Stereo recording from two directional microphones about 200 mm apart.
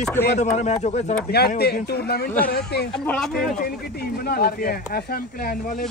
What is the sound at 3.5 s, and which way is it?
Speech, 50° left (ahead or behind).